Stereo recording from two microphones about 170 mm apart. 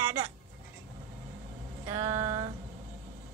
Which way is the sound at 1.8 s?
20° right (ahead or behind).